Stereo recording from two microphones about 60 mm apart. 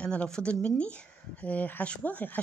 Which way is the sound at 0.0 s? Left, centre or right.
Centre.